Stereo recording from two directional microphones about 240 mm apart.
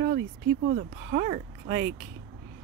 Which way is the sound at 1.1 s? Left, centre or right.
Right.